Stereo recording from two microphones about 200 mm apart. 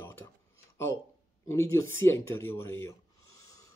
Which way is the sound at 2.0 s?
15° left (ahead or behind).